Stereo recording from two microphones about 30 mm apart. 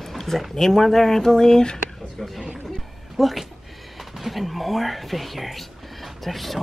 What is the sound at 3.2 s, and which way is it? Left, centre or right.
Speech, centre.